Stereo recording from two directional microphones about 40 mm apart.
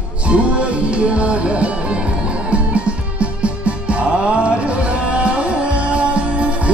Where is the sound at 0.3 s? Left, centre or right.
Right.